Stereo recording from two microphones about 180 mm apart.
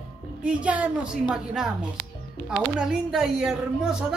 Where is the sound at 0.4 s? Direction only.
5° right (ahead or behind).